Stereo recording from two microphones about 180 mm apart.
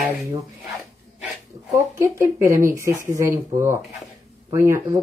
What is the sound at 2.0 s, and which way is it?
Speech, 15° right (ahead or behind).